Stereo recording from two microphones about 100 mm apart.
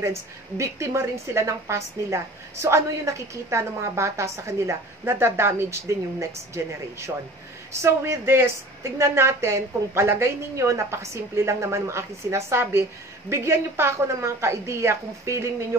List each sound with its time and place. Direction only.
0.0 s speech: 30° right (ahead or behind)